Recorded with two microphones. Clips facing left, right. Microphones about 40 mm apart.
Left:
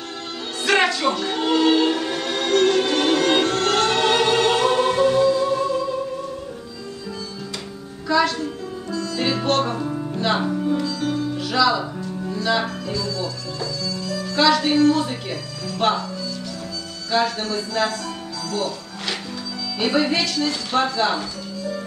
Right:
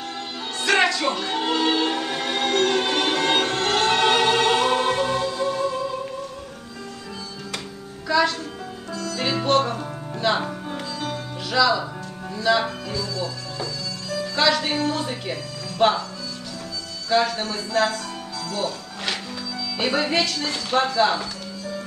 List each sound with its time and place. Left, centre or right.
0.7 s music: centre
8.1 s music: centre
10.8 s sitar: right
11.1 s music: centre
15.8 s speech: centre
17.1 s speech: centre
18.5 s music: centre
19.8 s speech: centre